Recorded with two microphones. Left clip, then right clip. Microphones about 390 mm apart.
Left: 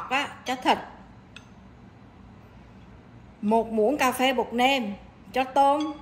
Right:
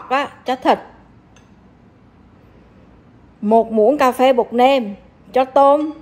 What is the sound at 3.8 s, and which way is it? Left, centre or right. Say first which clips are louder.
A woman's voice: right 10 dB; right.